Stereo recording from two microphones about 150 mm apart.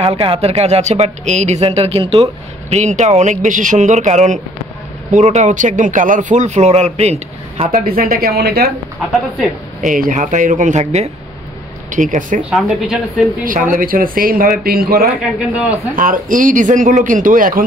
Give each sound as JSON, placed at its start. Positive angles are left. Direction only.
{"t": 0.0, "sound": "speech", "side_deg": -40}
{"t": 7.7, "sound": "speech", "side_deg": -75}
{"t": 9.8, "sound": "a man's voice", "side_deg": -65}
{"t": 12.4, "sound": "speech", "side_deg": -5}
{"t": 13.5, "sound": "speech", "side_deg": -65}
{"t": 15.3, "sound": "speech", "side_deg": -10}
{"t": 16.0, "sound": "a man's voice", "side_deg": -65}